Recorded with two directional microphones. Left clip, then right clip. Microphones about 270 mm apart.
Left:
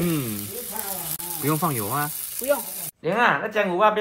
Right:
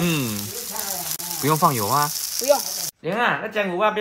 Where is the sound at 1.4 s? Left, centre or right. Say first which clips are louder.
Right 6 dB; centre.